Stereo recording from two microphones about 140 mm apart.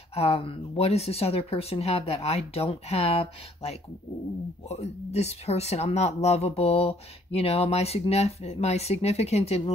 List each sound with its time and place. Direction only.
0.1 s speech: 45° left (ahead or behind)